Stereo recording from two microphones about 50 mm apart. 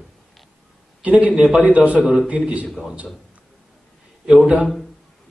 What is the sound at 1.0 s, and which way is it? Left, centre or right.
A man's voice, right.